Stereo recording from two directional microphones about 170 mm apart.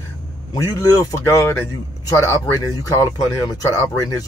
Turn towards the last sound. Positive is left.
turn(degrees=20)  # may be behind; listen again after turning